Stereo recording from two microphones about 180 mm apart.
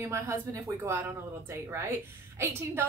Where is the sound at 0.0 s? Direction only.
15° right (ahead or behind).